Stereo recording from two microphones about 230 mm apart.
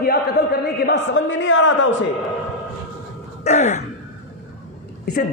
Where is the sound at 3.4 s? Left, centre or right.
Left.